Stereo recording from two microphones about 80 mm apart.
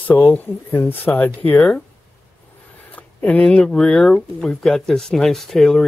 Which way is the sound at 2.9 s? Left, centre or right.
Centre.